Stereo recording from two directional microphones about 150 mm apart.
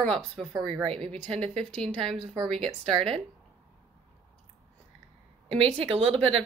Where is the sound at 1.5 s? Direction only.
5° left (ahead or behind).